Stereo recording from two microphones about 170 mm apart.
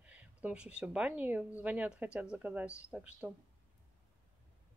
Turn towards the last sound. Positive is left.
turn(degrees=-5)  # may be behind; listen again after turning